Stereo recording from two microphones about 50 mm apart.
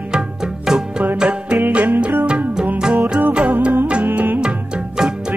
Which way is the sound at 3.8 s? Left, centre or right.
Right.